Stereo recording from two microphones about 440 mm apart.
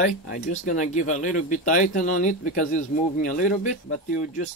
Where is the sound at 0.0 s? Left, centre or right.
Centre.